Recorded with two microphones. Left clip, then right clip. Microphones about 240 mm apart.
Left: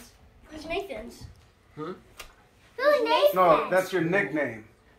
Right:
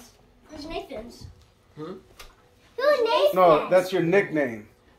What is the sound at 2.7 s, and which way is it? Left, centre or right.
Speech, right.